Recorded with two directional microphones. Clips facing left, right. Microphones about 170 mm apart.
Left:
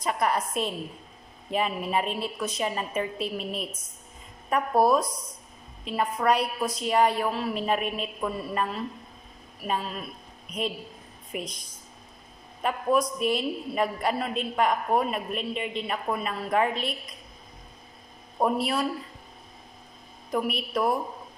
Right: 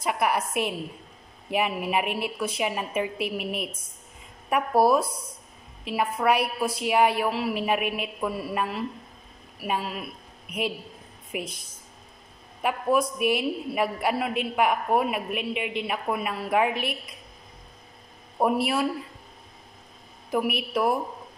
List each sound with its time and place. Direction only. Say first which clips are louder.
0.0 s a woman's voice: right 1 dB; 10° right (ahead or behind)
11.3 s a woman's voice: right 1 dB; 10° right (ahead or behind)
12.6 s a woman's voice: right 1 dB; 10° right (ahead or behind)
18.4 s a woman's voice: right 2 dB; 10° right (ahead or behind)
20.2 s a woman's voice: right 2 dB; 10° right (ahead or behind)